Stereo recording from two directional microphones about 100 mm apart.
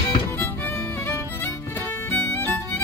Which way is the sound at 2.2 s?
20° left (ahead or behind).